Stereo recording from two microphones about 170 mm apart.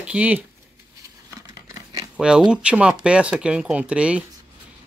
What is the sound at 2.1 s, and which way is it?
Speech, 5° right (ahead or behind).